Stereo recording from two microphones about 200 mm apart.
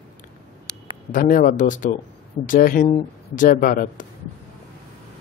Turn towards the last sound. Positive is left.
turn(degrees=40)  # may be behind; listen again after turning